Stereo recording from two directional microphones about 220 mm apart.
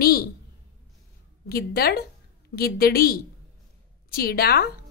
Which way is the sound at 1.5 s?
45° left (ahead or behind).